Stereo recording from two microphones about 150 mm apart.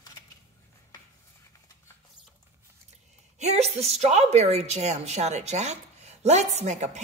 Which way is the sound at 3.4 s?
45° right (ahead or behind).